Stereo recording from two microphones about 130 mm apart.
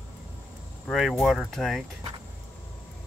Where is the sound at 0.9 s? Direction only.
Centre (ahead or behind).